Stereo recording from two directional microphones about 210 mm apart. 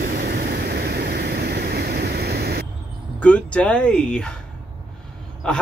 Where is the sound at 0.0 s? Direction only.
45° right (ahead or behind).